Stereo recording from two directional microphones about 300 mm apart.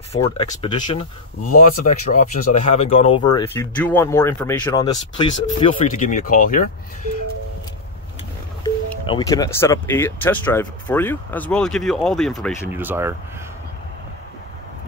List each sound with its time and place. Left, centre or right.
0.1 s speech: centre
9.0 s speech: centre